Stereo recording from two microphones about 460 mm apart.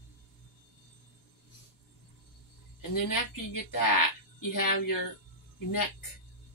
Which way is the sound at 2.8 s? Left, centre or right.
Left.